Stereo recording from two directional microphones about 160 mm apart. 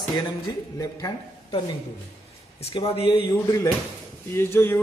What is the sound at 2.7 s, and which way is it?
Speech, 35° left (ahead or behind).